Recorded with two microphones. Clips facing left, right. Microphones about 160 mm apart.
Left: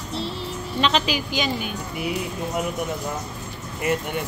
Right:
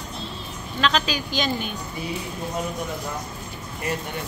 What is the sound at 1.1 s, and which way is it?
Speech, 10° left (ahead or behind).